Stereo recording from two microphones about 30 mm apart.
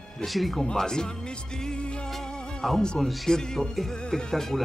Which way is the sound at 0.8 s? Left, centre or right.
Left.